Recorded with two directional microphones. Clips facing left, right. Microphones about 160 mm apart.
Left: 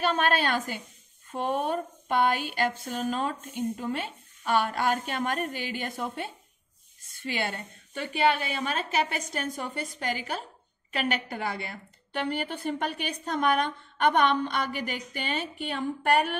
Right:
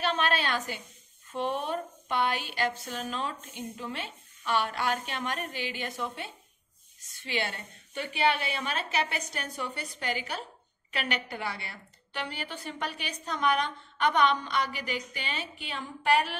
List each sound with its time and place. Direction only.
0.0 s a woman's voice: 50° left (ahead or behind)